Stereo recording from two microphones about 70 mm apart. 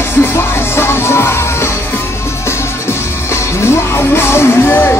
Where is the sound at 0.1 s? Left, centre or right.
Left.